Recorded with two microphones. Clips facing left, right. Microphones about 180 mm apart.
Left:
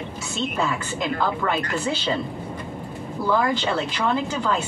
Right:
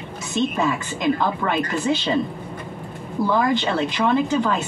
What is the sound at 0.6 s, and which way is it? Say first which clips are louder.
Speech: right 4 dB; 15° right (ahead or behind).